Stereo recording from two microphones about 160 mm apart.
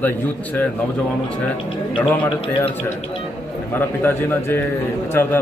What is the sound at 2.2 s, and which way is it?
Speech, 35° left (ahead or behind).